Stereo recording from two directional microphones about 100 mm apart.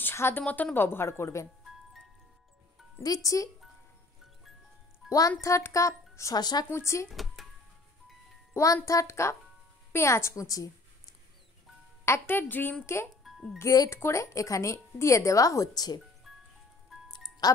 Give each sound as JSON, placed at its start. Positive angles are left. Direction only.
{"t": 0.0, "sound": "a sound", "side_deg": 25}
{"t": 0.4, "sound": "a woman's voice", "side_deg": 15}
{"t": 3.0, "sound": "speech", "side_deg": 35}
{"t": 5.0, "sound": "music", "side_deg": 0}
{"t": 5.4, "sound": "speech", "side_deg": 30}
{"t": 6.4, "sound": "speech", "side_deg": 45}
{"t": 6.7, "sound": "a woman's voice", "side_deg": 30}
{"t": 7.1, "sound": "speech", "side_deg": 0}
{"t": 8.8, "sound": "a woman's voice", "side_deg": 30}
{"t": 12.0, "sound": "a woman's voice", "side_deg": 25}
{"t": 13.2, "sound": "music", "side_deg": 0}
{"t": 13.6, "sound": "speech", "side_deg": 30}
{"t": 16.9, "sound": "music", "side_deg": -5}
{"t": 17.4, "sound": "speech", "side_deg": 40}